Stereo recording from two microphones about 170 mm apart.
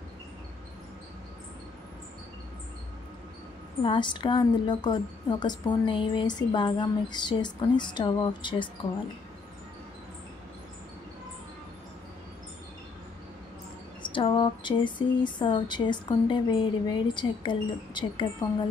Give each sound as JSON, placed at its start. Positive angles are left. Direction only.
{"t": 3.8, "sound": "a woman's voice", "side_deg": 30}
{"t": 14.0, "sound": "a woman's voice", "side_deg": 30}